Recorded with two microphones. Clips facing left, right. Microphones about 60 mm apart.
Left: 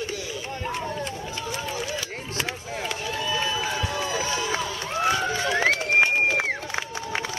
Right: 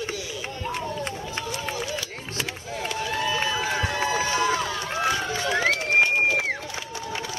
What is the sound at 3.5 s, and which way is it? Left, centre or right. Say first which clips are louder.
Run: right 2 dB; right.